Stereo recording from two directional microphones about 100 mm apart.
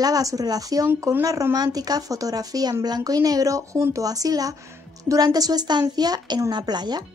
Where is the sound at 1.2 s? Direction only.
35° right (ahead or behind).